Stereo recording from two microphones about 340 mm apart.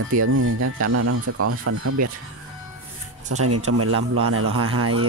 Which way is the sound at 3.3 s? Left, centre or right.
Right.